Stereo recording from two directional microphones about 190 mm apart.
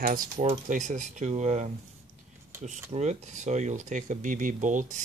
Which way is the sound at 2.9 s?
35° right (ahead or behind).